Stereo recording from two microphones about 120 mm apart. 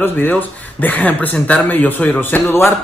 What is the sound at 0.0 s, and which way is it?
Speech, 15° left (ahead or behind).